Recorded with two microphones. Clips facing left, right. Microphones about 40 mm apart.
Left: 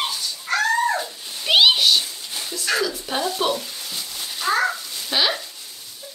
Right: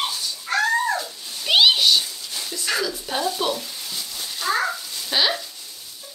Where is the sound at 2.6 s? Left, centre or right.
Centre.